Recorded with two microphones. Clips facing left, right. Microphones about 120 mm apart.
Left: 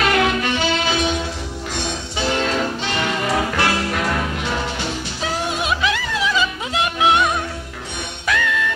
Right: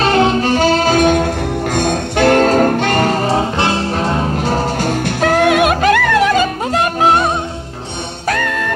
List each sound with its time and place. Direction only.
0.0 s music: 30° right (ahead or behind); by 8.7 s 50° right (ahead or behind)